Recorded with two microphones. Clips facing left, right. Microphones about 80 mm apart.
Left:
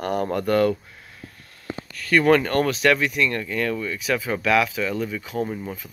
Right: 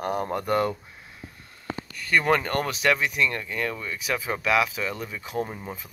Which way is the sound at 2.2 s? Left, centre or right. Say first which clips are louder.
Left 9 dB; right.